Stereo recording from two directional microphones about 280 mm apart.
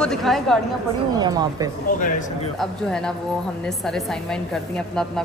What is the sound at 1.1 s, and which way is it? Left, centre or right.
Speech, centre.